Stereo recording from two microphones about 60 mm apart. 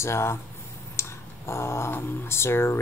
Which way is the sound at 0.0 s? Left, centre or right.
Left.